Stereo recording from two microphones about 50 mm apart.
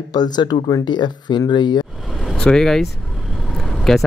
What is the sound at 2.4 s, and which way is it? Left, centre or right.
Speech, centre.